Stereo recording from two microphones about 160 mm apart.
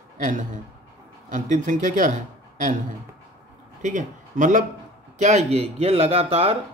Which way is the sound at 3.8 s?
50° right (ahead or behind).